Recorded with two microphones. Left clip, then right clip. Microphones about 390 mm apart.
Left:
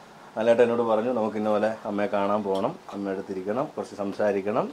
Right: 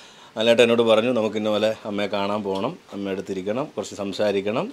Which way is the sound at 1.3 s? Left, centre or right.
Right.